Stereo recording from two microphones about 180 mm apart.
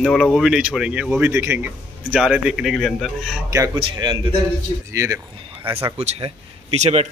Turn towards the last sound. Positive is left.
turn(degrees=-40)  # may be behind; listen again after turning